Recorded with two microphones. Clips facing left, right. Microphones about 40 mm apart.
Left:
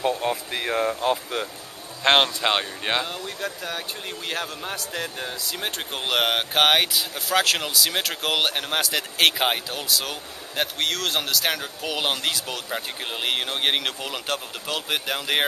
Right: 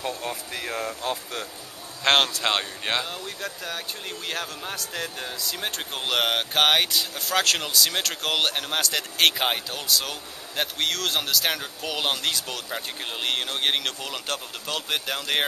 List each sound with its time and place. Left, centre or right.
0.0 s speech: left
2.0 s speech: centre